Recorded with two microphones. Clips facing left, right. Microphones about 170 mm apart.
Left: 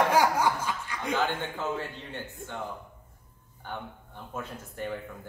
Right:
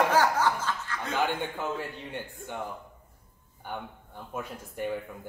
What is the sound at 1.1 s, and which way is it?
Speech, 15° right (ahead or behind).